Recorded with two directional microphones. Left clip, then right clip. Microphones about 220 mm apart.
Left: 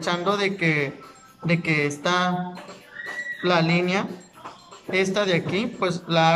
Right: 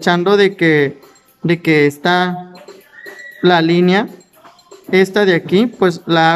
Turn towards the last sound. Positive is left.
turn(degrees=-40)  # may be behind; listen again after turning